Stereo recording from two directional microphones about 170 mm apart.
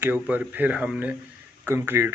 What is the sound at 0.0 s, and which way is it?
A man's voice, 10° right (ahead or behind).